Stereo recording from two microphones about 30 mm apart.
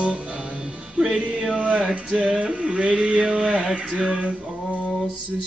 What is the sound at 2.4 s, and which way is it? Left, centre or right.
Music, right.